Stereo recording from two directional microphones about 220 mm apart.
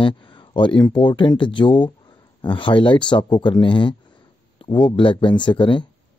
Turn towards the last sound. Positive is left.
turn(degrees=20)  # may be behind; listen again after turning